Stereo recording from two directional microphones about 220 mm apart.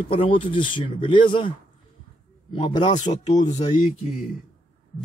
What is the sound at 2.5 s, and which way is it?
Speech, 20° left (ahead or behind).